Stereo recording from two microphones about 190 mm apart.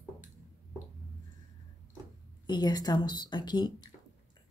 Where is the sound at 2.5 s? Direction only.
20° left (ahead or behind).